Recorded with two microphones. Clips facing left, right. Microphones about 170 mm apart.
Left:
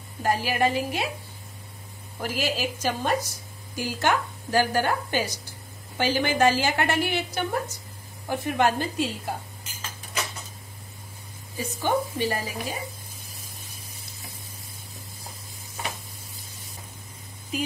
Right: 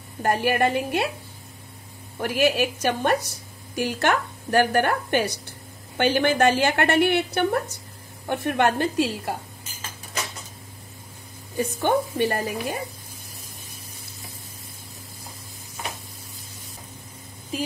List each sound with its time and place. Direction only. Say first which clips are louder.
0.2 s a woman's voice: right 3 dB; 60° right (ahead or behind)
2.2 s a woman's voice: right 6 dB; 65° right (ahead or behind)
11.5 s a woman's voice: right 4 dB; 60° right (ahead or behind)